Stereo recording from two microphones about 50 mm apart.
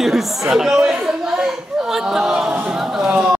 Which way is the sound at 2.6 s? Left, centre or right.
Centre.